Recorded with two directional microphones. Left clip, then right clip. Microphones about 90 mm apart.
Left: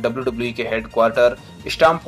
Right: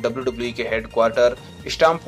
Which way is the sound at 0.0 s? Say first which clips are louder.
Left 2 dB; 25° left (ahead or behind).